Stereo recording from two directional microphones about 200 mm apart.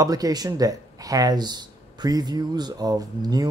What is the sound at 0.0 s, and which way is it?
Speech, 20° right (ahead or behind).